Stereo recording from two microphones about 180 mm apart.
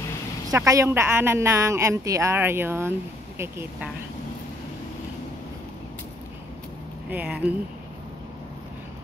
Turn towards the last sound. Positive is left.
turn(degrees=-10)  # may be behind; listen again after turning